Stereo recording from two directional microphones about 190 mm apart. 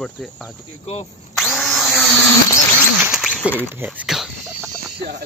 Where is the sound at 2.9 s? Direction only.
5° right (ahead or behind).